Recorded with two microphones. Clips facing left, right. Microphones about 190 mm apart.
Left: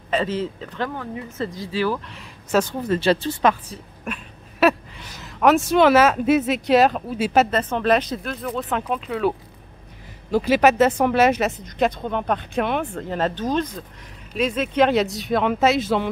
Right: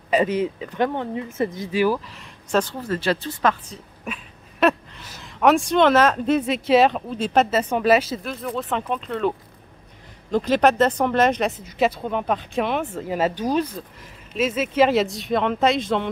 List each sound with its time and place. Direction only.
0.1 s speech: 15° right (ahead or behind)
0.8 s speech: 25° right (ahead or behind)
2.0 s speech: centre (ahead or behind)
2.9 s speech: 25° left (ahead or behind)
3.7 s speech: centre (ahead or behind)
7.5 s speech: 5° right (ahead or behind)
10.3 s speech: 5° left (ahead or behind)